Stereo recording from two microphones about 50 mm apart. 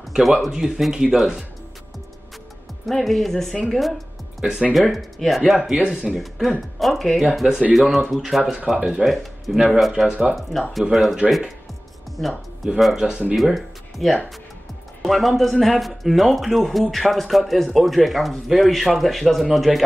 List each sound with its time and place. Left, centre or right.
0.1 s speech: centre
2.9 s speech: centre
6.1 s speech: centre
7.2 s speech: centre
10.0 s speech: centre
10.7 s speech: centre
12.2 s speech: centre
12.6 s speech: centre